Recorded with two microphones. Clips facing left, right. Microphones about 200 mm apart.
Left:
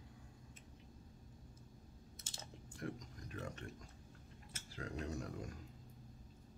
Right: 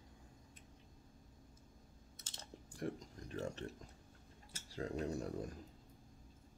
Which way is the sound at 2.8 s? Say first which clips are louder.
Right 3 dB; 30° right (ahead or behind).